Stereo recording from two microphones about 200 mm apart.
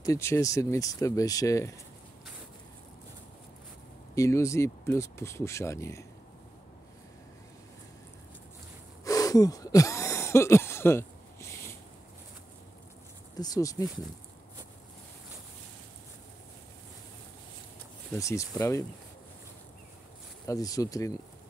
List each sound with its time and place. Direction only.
0.0 s speech: 15° left (ahead or behind)
4.1 s speech: 15° left (ahead or behind)
9.0 s throat clearing: 15° left (ahead or behind)
13.4 s speech: 15° left (ahead or behind)
18.1 s speech: 15° left (ahead or behind)
20.4 s speech: 15° left (ahead or behind)